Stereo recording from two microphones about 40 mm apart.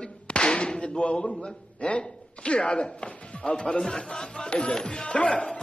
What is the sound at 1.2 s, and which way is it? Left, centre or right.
A man's voice, left.